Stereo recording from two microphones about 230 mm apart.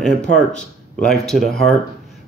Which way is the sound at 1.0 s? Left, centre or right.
Centre.